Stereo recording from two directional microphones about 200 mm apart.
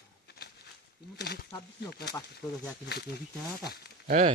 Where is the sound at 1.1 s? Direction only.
55° left (ahead or behind).